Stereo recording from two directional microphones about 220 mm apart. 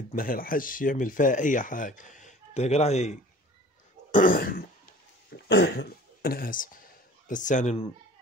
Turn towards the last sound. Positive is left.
turn(degrees=35)  # may be behind; listen again after turning